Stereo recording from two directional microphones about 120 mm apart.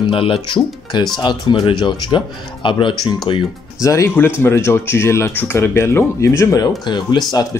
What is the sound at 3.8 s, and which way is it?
Speech, 25° left (ahead or behind).